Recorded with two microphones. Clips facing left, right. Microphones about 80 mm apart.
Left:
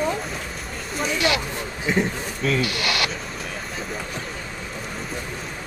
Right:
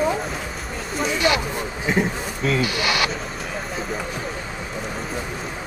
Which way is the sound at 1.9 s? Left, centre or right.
Centre.